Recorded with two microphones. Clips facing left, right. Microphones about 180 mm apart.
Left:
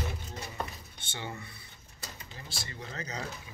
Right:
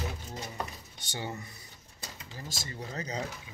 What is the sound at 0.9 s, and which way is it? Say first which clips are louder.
Speech: right 3 dB; 40° right (ahead or behind).